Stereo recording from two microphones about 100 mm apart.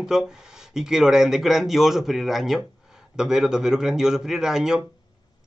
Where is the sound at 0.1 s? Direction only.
5° right (ahead or behind).